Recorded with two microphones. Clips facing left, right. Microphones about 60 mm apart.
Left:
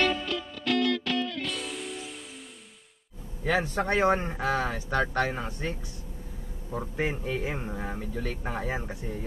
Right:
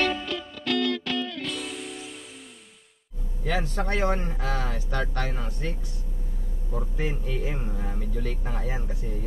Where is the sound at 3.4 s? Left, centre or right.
Centre.